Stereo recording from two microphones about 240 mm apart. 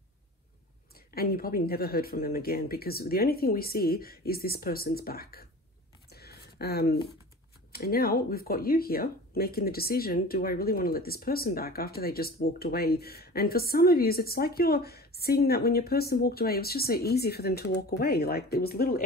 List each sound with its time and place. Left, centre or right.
0.9 s speech: left
6.0 s a sound: left
7.7 s speech: left